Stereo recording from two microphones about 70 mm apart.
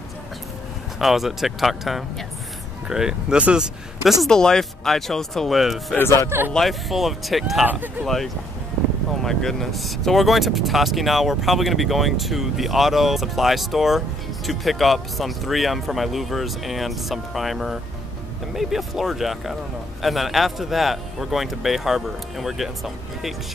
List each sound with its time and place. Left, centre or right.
0.9 s speech: centre
4.0 s speech: centre
4.3 s speech: centre
6.0 s speech: left
6.5 s speech: centre